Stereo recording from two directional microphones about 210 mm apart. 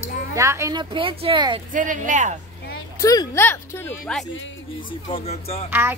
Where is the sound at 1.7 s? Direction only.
40° right (ahead or behind).